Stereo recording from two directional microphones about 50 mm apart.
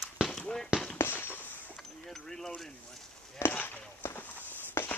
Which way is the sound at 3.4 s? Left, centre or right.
Left.